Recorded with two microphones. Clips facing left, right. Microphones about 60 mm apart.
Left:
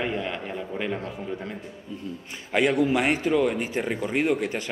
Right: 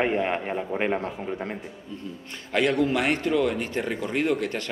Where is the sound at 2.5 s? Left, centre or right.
Centre.